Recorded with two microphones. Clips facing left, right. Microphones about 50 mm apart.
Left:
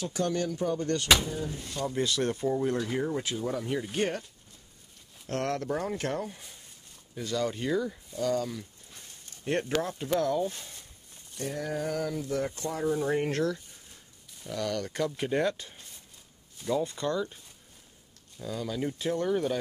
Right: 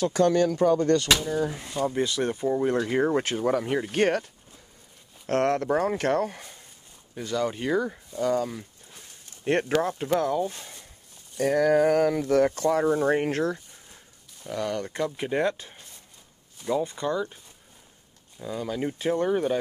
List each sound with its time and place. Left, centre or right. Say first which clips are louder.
0.0 s speech: right 9 dB; right
1.0 s speech: even; centre
1.7 s speech: right 4 dB; centre
2.7 s speech: right 5 dB; right
3.0 s speech: right 7 dB; right
5.2 s speech: right 7 dB; right
7.2 s speech: right 3 dB; right
11.4 s speech: right 13 dB; right
11.8 s speech: right 10 dB; right
12.8 s speech: right 5 dB; right
14.9 s speech: right 2 dB; centre
18.4 s speech: right 3 dB; right